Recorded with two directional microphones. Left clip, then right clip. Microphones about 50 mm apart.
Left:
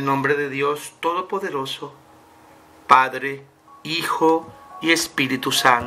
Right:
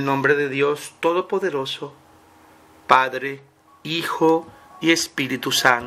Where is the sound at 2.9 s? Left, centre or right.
Right.